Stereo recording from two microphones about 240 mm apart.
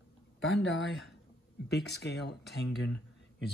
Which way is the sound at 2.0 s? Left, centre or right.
Left.